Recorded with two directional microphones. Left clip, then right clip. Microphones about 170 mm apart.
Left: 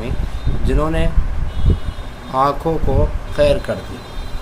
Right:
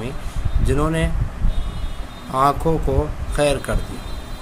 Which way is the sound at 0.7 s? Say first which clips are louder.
Left 1 dB; 30° right (ahead or behind).